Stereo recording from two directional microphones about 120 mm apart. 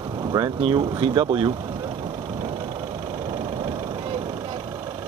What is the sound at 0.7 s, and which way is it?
Vehicle, 35° right (ahead or behind).